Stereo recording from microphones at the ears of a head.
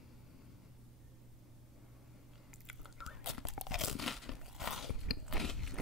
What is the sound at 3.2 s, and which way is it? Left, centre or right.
Crunch, left.